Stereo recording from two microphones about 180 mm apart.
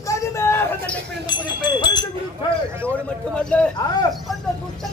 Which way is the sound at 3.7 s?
20° left (ahead or behind).